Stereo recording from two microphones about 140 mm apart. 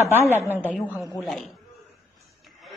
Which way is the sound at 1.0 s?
Centre (ahead or behind).